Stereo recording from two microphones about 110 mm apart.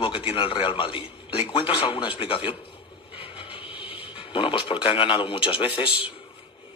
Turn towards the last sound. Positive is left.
turn(degrees=55)  # may be behind; listen again after turning